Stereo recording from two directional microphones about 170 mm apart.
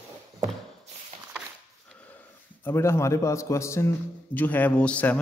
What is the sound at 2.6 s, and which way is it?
A man's voice, 15° left (ahead or behind).